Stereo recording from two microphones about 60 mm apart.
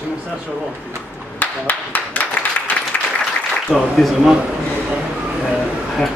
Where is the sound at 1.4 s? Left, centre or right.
Left.